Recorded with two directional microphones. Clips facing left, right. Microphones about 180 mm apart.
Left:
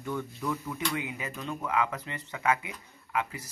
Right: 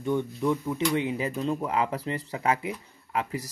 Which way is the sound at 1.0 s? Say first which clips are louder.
Right 9 dB; 30° right (ahead or behind).